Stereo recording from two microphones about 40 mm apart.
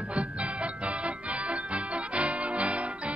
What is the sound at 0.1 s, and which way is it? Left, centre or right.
Music, right.